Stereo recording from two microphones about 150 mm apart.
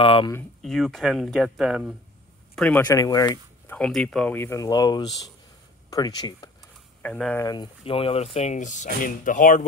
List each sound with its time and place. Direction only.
0.0 s speech: 35° left (ahead or behind)
0.6 s speech: centre (ahead or behind)
2.5 s speech: 10° left (ahead or behind)
2.9 s speech: 25° left (ahead or behind)
3.6 s speech: 5° left (ahead or behind)
4.4 s speech: 20° left (ahead or behind)
7.0 s speech: 10° left (ahead or behind)
7.4 s speech: 30° left (ahead or behind); by 9.7 s 60° left (ahead or behind)